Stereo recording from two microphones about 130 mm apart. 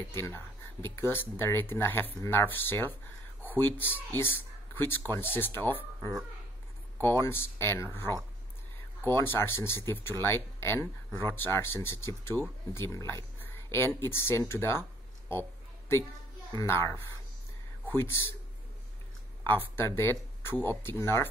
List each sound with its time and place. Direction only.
0.2 s speech: 15° left (ahead or behind)
7.0 s speech: 20° left (ahead or behind)
16.5 s speech: 20° left (ahead or behind)
19.4 s speech: 15° left (ahead or behind)